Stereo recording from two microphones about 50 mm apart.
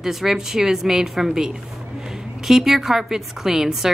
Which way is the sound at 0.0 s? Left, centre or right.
Centre.